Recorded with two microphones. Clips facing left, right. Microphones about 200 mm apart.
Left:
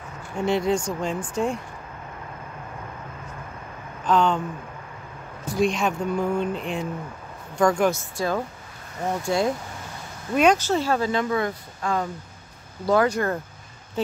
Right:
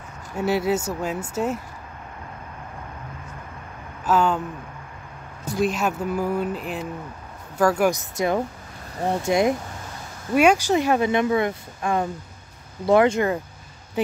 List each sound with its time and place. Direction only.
0.4 s speech: 5° right (ahead or behind)
4.0 s speech: 5° right (ahead or behind)
5.6 s speech: 5° right (ahead or behind)
9.0 s speech: 25° right (ahead or behind)
10.3 s speech: 10° right (ahead or behind)